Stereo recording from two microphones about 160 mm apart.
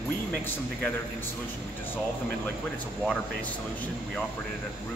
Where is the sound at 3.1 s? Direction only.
10° left (ahead or behind).